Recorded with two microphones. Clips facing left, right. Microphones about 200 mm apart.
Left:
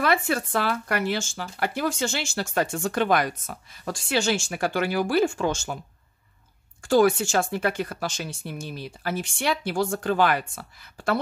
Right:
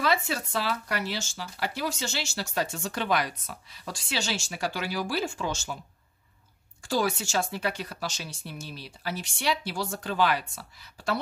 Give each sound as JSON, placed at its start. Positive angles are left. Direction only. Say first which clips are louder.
{"t": 0.0, "sound": "speech", "louder": "left 4 dB", "side_deg": 55}
{"t": 6.8, "sound": "speech", "louder": "left 9 dB", "side_deg": 55}